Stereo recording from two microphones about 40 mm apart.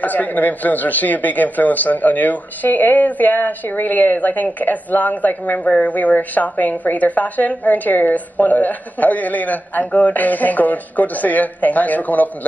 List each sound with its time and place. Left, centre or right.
0.0 s a woman's voice: left
5.6 s a woman's voice: left